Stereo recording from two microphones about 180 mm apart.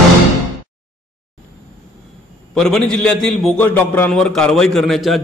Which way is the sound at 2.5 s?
Centre (ahead or behind).